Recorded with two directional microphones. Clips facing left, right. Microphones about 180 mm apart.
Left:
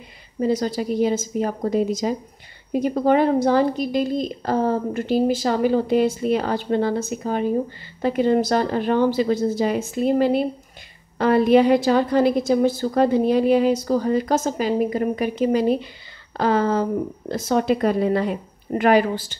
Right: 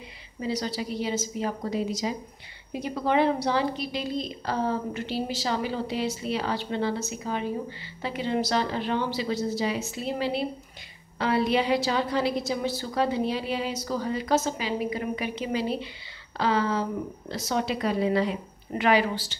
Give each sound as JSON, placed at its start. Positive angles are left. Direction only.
{"t": 0.4, "sound": "a woman's voice", "side_deg": 50}